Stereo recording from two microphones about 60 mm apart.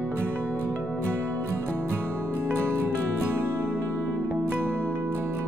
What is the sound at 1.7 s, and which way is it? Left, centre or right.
Music, right.